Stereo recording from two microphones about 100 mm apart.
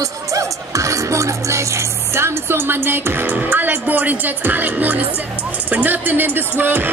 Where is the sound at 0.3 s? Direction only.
35° right (ahead or behind).